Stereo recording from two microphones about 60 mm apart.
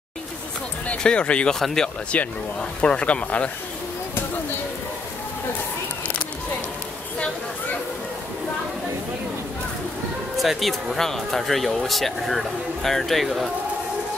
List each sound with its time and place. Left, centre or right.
0.8 s speech: centre
1.6 s speech: centre
2.1 s speech: left
10.3 s speech: centre